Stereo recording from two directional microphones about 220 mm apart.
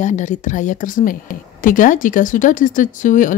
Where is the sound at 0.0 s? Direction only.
35° left (ahead or behind).